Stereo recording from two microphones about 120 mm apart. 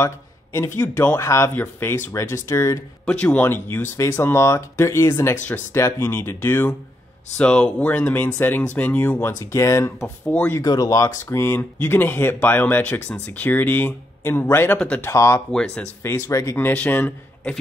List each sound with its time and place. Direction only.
0.0 s speech: 25° left (ahead or behind)
3.1 s speech: 10° left (ahead or behind)
7.3 s speech: 10° left (ahead or behind)
9.4 s speech: 25° left (ahead or behind)
9.9 s speech: 10° left (ahead or behind)
10.6 s speech: 30° left (ahead or behind); by 15.0 s 10° left (ahead or behind)
15.0 s speech: 25° left (ahead or behind)
15.5 s speech: 5° left (ahead or behind)
16.0 s speech: 20° left (ahead or behind)